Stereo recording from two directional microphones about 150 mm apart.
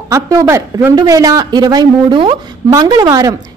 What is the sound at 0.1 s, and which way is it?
A woman's voice, 20° right (ahead or behind).